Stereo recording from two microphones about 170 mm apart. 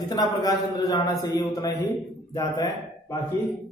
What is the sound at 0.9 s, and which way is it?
A man's voice, 20° left (ahead or behind).